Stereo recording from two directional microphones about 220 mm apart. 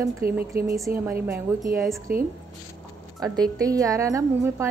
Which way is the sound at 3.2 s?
15° right (ahead or behind).